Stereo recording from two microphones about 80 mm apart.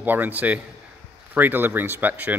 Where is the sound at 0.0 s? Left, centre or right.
Right.